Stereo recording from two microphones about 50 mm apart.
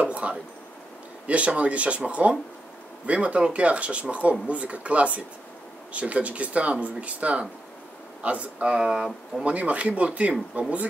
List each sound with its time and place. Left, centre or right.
0.0 s speech: right
8.6 s speech: centre
9.4 s speech: right